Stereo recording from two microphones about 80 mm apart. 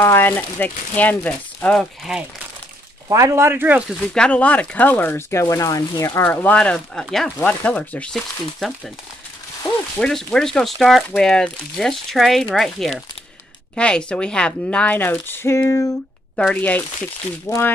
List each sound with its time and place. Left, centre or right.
0.0 s speech: left
2.1 s speech: centre
3.1 s speech: right
4.0 s speech: centre
5.3 s speech: left
6.2 s speech: centre
8.1 s speech: centre
9.9 s speech: centre
13.7 s speech: centre
15.0 s speech: left
16.5 s speech: left